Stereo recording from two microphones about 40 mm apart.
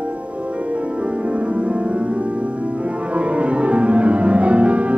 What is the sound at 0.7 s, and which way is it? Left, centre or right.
Music, right.